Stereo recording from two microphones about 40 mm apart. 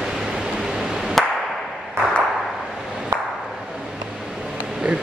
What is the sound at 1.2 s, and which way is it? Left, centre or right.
Clapping, centre.